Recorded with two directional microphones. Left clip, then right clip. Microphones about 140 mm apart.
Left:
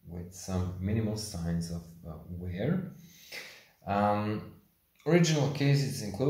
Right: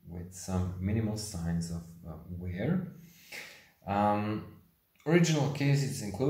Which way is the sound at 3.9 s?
15° left (ahead or behind).